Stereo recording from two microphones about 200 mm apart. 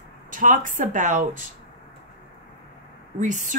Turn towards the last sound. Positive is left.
turn(degrees=-40)  # may be behind; listen again after turning